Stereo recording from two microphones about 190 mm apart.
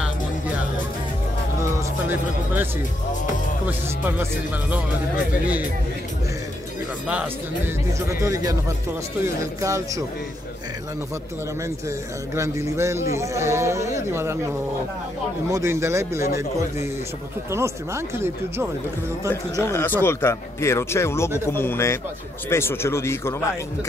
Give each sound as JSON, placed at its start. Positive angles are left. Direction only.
{"t": 1.6, "sound": "speech", "side_deg": -10}
{"t": 8.1, "sound": "speech", "side_deg": -15}
{"t": 12.4, "sound": "speech", "side_deg": -15}
{"t": 15.5, "sound": "speech", "side_deg": -15}
{"t": 17.5, "sound": "speech", "side_deg": -15}
{"t": 19.6, "sound": "speech", "side_deg": 10}